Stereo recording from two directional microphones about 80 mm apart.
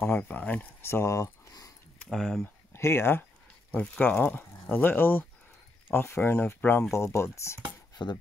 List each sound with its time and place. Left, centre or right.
0.0 s speech: centre; by 1.5 s left
2.0 s speech: centre
2.4 s speech: left
3.7 s speech: centre
6.9 s speech: left
8.0 s speech: left